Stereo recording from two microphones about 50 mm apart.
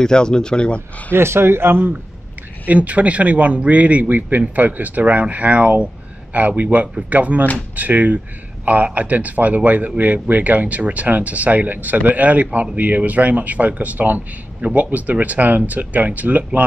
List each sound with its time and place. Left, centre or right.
0.0 s speech: centre
1.1 s speech: right
2.6 s a man's voice: right